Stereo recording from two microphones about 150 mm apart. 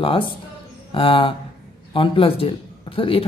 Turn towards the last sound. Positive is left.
turn(degrees=35)  # may be behind; listen again after turning